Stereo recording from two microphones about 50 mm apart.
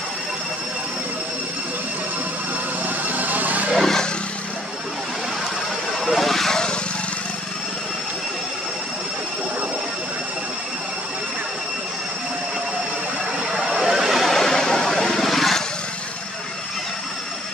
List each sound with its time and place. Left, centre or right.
3.1 s a sound: right
3.8 s vehicle: centre
5.9 s vehicle: centre
13.5 s vehicle: centre